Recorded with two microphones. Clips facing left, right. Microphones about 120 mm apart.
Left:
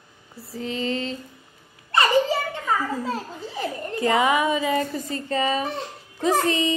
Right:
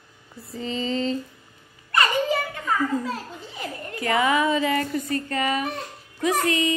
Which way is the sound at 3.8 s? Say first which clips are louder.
Left 2 dB; 25° left (ahead or behind).